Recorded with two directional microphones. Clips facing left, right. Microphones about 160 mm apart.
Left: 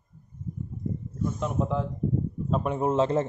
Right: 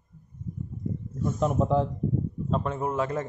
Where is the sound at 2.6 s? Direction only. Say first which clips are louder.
Left 8 dB; 20° left (ahead or behind).